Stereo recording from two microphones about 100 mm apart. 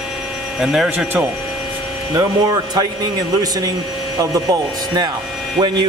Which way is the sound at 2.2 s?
40° right (ahead or behind).